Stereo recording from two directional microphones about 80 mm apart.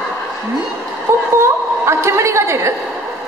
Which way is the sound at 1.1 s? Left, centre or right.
Right.